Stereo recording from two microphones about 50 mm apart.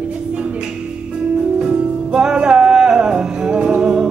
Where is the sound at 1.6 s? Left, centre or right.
Centre.